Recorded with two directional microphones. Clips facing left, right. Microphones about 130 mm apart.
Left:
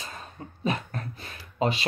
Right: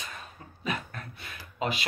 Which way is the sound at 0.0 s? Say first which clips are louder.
Left 3 dB; 30° left (ahead or behind).